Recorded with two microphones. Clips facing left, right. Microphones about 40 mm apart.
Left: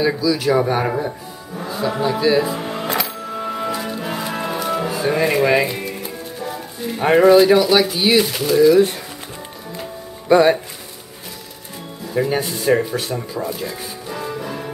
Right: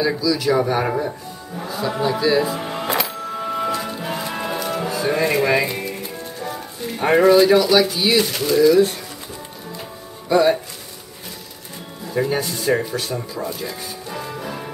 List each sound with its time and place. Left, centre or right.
0.0 s a man's voice: centre
0.8 s music: centre
10.2 s speech: left
12.1 s speech: centre
12.4 s speech: centre